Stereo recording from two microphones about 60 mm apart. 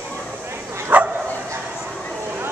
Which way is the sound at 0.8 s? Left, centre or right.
Right.